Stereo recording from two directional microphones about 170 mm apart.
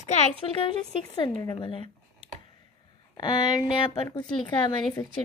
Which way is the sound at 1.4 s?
30° left (ahead or behind).